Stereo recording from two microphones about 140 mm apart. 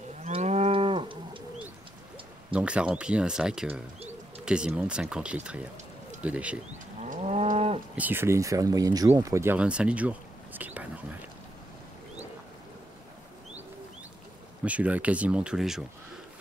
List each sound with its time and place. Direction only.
0.2 s moo: 55° right (ahead or behind); by 1.4 s 40° right (ahead or behind)
2.5 s speech: 10° right (ahead or behind)
7.0 s livestock: 55° right (ahead or behind)
7.9 s speech: 15° right (ahead or behind)
9.6 s a sound: 10° right (ahead or behind)
14.6 s speech: 10° right (ahead or behind)